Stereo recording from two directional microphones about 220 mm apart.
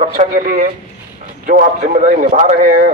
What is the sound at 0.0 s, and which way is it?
A man's voice, 35° right (ahead or behind).